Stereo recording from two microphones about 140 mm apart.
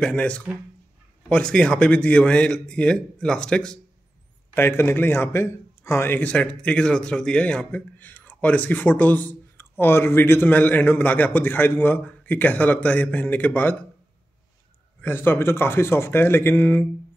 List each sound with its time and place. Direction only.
0.0 s a man's voice: 5° left (ahead or behind)
4.6 s a man's voice: 15° left (ahead or behind)
15.0 s a man's voice: 15° left (ahead or behind)